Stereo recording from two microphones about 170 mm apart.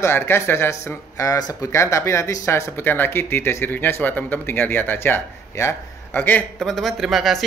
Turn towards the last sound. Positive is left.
turn(degrees=0)  # may be behind; listen again after turning